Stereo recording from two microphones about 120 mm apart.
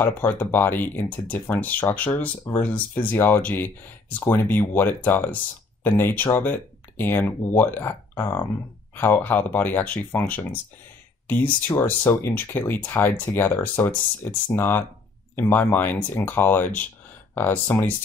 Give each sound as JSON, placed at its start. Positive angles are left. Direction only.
{"t": 0.0, "sound": "speech", "side_deg": 15}